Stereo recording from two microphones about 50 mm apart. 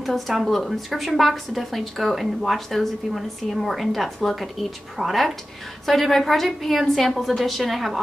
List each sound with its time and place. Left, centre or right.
0.0 s a woman's voice: centre